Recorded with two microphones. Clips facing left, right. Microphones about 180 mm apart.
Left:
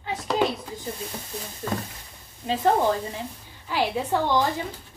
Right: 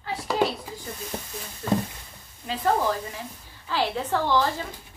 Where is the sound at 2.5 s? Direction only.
25° left (ahead or behind).